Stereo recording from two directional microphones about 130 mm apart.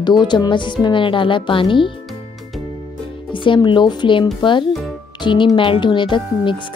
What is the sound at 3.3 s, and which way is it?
Speech, 40° left (ahead or behind).